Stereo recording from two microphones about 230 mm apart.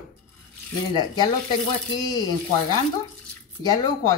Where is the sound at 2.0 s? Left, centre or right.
Centre.